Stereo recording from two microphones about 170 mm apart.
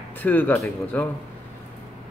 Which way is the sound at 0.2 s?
10° left (ahead or behind).